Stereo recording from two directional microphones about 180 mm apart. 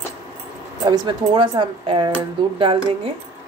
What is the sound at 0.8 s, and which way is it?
Speech, 25° right (ahead or behind).